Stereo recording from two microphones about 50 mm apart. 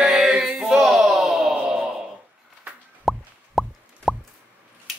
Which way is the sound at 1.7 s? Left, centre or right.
Centre.